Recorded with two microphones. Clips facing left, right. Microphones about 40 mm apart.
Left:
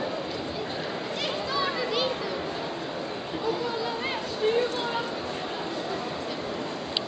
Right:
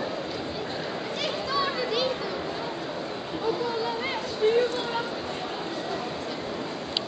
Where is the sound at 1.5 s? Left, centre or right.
Centre.